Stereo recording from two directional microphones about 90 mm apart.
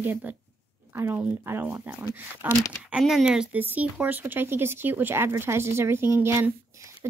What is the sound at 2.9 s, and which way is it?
Speech, 5° right (ahead or behind).